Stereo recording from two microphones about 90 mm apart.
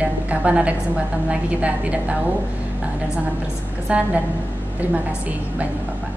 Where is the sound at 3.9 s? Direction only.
10° right (ahead or behind).